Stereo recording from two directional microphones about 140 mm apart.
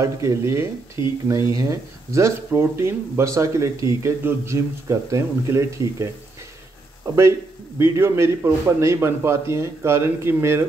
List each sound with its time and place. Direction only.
0.0 s speech: 20° right (ahead or behind)
1.0 s speech: 30° left (ahead or behind)
1.3 s speech: 25° right (ahead or behind)
7.8 s speech: 20° right (ahead or behind)